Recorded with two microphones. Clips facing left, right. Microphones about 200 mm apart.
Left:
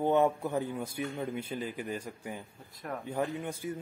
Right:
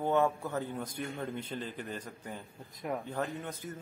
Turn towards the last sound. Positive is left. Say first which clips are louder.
# left 4 dB
turn(degrees=10)  # may be behind; listen again after turning